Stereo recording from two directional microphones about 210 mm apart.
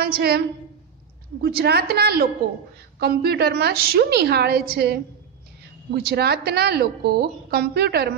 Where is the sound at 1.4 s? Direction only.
50° right (ahead or behind).